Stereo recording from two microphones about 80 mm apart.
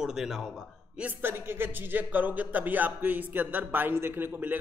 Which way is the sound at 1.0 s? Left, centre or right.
Right.